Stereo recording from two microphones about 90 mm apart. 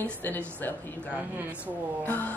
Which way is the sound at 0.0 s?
20° left (ahead or behind).